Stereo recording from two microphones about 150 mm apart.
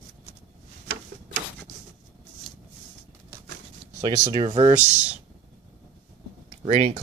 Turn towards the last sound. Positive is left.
turn(degrees=-45)  # may be behind; listen again after turning